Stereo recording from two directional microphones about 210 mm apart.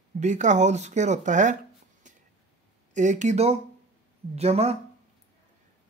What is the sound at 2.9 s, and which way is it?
Speech, 35° right (ahead or behind).